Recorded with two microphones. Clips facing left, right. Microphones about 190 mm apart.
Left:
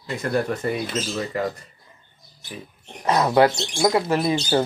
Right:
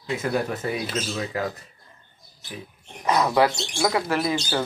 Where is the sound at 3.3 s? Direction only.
15° left (ahead or behind).